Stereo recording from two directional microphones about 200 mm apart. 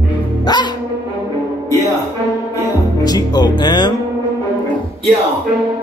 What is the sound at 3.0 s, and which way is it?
Speech, 20° left (ahead or behind).